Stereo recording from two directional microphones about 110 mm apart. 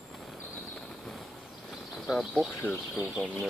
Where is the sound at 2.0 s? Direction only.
Centre (ahead or behind).